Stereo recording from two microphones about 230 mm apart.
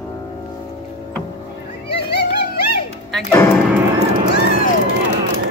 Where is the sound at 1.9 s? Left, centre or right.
Left.